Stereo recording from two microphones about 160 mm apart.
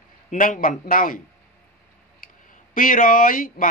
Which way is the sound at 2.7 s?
55° left (ahead or behind).